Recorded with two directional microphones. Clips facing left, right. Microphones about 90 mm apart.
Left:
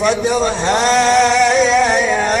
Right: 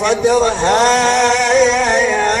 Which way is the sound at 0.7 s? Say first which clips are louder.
Left 1 dB; centre (ahead or behind).